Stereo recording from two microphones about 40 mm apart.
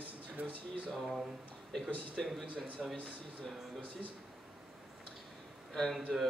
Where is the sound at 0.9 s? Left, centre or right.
Centre.